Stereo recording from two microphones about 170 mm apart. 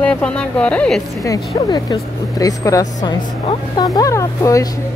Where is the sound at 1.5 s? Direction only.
25° left (ahead or behind).